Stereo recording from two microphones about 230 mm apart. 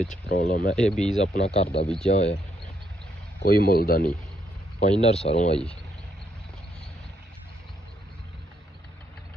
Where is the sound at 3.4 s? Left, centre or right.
Left.